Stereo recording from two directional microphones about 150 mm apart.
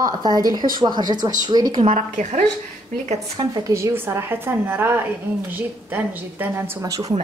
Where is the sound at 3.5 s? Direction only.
20° right (ahead or behind).